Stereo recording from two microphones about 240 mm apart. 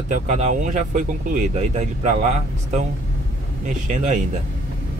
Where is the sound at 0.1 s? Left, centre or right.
Right.